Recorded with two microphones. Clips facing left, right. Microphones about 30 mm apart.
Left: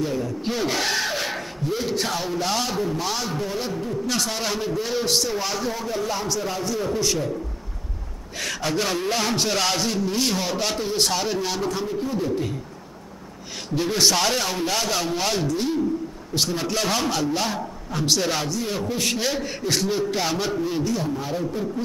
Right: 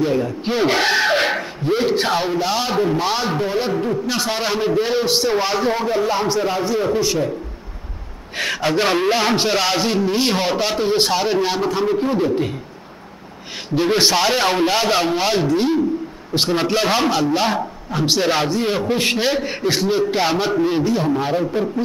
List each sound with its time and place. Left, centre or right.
0.0 s speech: right
1.1 s a sound: right
2.4 s a man's voice: centre
2.7 s a man's voice: right
4.1 s a man's voice: right
5.0 s a man's voice: right
8.4 s a man's voice: right
11.8 s a man's voice: right
13.8 s a man's voice: right
14.4 s a man's voice: right